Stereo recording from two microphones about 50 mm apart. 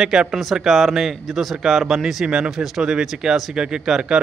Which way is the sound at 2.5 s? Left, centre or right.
Centre.